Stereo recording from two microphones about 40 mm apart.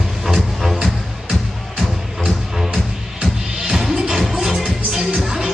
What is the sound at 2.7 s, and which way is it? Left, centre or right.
Music, centre.